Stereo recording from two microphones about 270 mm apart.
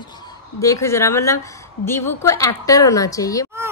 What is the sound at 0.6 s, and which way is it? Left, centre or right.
A woman's voice, centre.